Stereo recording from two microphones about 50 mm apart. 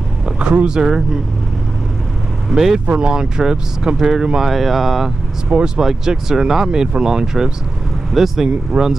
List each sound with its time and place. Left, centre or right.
0.4 s speech: centre
2.5 s speech: centre
5.5 s speech: centre